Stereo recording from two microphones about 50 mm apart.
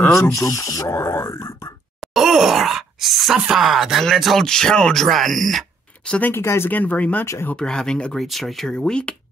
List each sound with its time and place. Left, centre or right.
0.1 s speech: left
2.0 s groan: centre
3.3 s speech: centre
3.6 s speech: centre
6.3 s speech: left
6.7 s speech: left
7.5 s speech: centre